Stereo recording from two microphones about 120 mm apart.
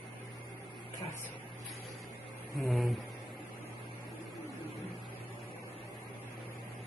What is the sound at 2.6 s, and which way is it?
Speech, centre (ahead or behind).